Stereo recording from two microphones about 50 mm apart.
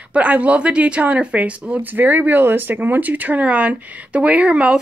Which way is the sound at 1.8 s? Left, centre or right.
Right.